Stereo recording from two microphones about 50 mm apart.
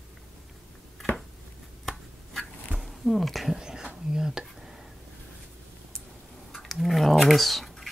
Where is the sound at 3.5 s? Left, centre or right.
Centre.